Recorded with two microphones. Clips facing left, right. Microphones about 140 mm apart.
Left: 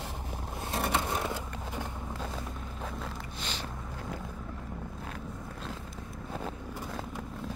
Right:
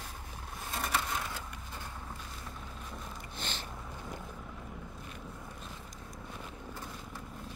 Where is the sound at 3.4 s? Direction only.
55° right (ahead or behind).